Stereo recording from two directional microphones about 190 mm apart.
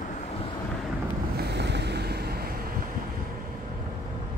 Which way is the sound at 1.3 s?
60° right (ahead or behind).